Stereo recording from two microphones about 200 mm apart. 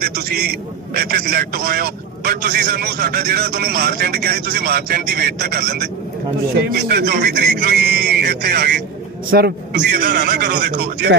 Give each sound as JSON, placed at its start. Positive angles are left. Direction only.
{"t": 0.0, "sound": "a man's voice", "side_deg": -50}